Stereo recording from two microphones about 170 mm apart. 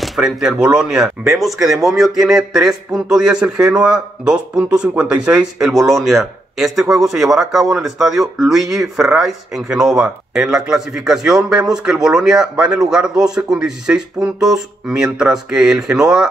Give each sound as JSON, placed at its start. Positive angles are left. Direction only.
{"t": 0.0, "sound": "speech", "side_deg": 0}